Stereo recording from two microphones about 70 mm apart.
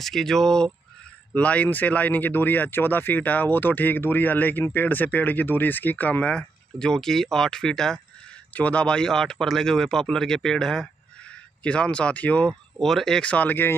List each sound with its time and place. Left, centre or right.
0.0 s speech: centre
1.3 s speech: left
8.5 s speech: centre
12.7 s speech: centre
13.3 s speech: left